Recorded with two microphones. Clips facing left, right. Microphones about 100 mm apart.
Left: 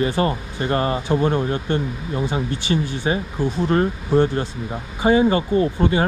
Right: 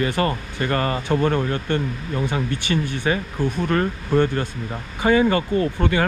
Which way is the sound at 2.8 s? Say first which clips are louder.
Left 1 dB; 55° right (ahead or behind).